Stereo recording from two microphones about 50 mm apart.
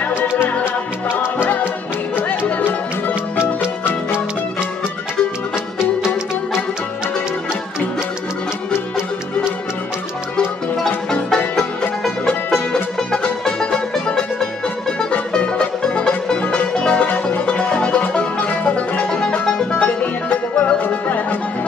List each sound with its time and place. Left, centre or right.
5.8 s music: centre
11.2 s music: centre
12.7 s music: centre
15.1 s music: left
19.0 s music: centre
20.8 s music: left